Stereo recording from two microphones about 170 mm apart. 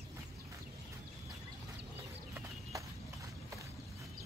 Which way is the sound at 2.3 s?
20° right (ahead or behind).